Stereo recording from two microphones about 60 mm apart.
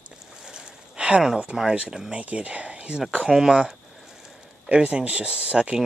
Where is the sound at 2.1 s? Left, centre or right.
Right.